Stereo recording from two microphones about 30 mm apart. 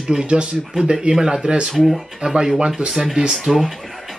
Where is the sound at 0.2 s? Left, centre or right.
Right.